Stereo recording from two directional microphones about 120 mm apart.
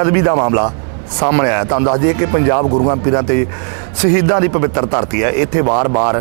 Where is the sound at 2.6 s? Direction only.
30° right (ahead or behind).